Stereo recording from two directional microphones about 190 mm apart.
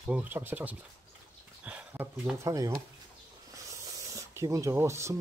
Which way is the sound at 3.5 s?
15° right (ahead or behind).